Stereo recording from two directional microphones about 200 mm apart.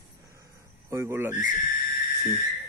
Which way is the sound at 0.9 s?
10° right (ahead or behind).